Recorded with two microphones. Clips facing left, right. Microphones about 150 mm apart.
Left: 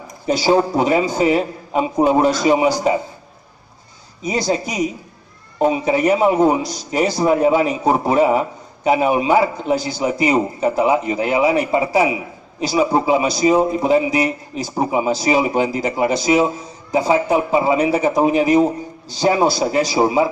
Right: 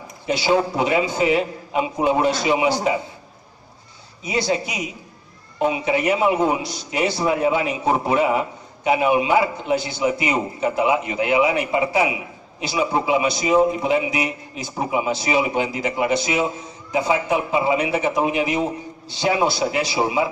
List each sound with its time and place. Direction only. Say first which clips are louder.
0.3 s a man's voice: left 4 dB; 40° left (ahead or behind)
4.2 s a man's voice: left 3 dB; 40° left (ahead or behind)